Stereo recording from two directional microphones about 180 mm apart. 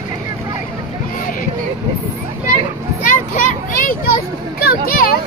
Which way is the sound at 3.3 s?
50° left (ahead or behind).